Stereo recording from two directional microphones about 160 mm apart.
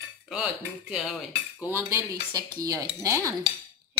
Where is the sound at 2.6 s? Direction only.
20° right (ahead or behind).